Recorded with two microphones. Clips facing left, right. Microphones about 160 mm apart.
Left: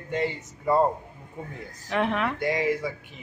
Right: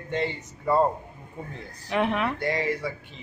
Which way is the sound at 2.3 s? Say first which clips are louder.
Left 2 dB; 15° left (ahead or behind).